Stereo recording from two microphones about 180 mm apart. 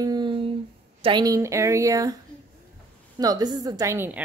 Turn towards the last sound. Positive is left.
turn(degrees=-10)  # may be behind; listen again after turning